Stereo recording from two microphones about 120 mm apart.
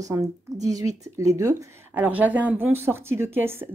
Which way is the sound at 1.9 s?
15° right (ahead or behind).